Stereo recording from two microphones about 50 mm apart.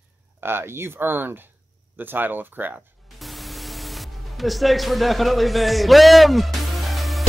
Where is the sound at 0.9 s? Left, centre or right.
Right.